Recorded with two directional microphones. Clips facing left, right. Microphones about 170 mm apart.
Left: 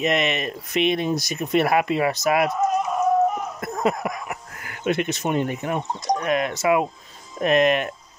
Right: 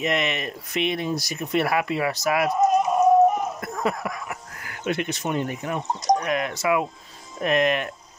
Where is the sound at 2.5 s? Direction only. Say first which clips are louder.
Right 3 dB; 20° right (ahead or behind).